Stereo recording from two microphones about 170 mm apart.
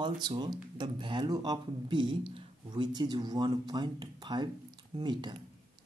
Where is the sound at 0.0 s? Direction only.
25° right (ahead or behind).